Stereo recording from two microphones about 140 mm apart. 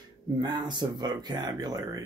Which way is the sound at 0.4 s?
30° right (ahead or behind).